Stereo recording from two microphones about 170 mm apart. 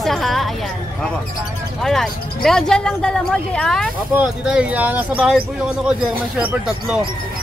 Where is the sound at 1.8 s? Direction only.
Centre (ahead or behind).